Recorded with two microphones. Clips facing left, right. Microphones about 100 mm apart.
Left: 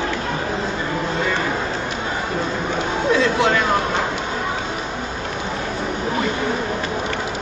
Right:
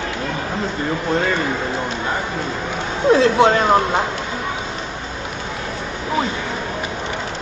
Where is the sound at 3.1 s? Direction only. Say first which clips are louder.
Right 5 dB; 35° right (ahead or behind).